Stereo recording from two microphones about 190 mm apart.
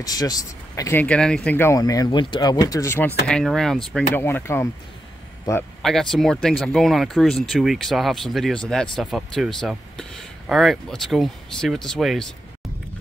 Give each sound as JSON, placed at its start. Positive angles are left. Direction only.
{"t": 0.0, "sound": "speech", "side_deg": 20}
{"t": 3.3, "sound": "speech", "side_deg": 5}
{"t": 5.8, "sound": "speech", "side_deg": 0}